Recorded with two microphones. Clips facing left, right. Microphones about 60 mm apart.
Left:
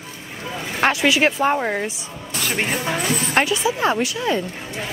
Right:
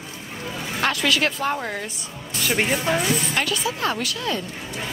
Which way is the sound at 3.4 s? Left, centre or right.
Centre.